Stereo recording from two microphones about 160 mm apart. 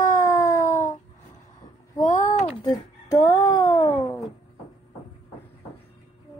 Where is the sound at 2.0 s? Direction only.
50° left (ahead or behind).